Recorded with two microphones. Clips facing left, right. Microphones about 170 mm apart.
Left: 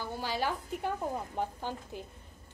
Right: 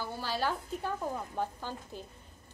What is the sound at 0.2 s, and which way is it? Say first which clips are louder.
A woman's voice: even; 15° left (ahead or behind).